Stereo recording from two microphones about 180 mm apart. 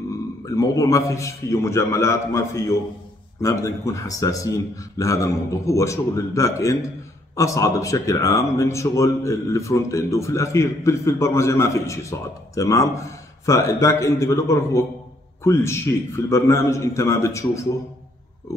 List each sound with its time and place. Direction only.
0.5 s speech: 20° left (ahead or behind)